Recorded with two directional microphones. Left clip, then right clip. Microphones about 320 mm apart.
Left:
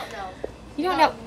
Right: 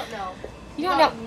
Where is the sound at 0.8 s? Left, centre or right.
Centre.